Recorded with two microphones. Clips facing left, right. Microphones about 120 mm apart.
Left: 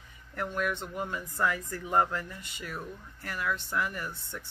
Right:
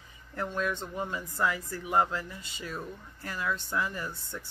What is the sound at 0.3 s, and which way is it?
Speech, 20° right (ahead or behind).